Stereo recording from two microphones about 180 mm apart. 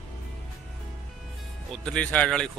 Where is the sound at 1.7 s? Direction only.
5° left (ahead or behind).